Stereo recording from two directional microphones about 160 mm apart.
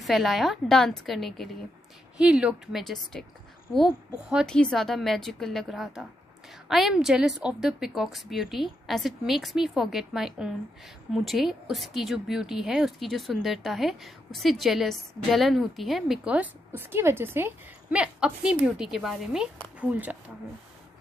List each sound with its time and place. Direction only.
0.0 s speech: centre (ahead or behind)